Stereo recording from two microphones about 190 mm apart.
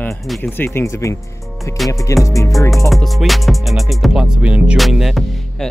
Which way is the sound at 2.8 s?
Centre (ahead or behind).